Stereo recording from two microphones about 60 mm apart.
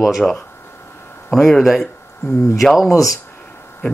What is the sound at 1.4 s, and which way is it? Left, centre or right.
Speech, centre.